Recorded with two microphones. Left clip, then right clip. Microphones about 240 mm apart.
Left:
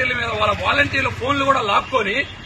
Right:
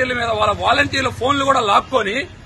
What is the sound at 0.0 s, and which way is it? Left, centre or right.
A man's voice, centre.